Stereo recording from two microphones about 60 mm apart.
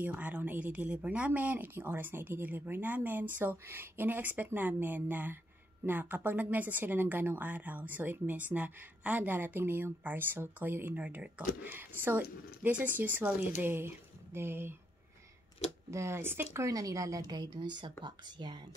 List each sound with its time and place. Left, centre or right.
0.0 s a woman's voice: right
15.9 s speech: right
16.6 s a woman's voice: right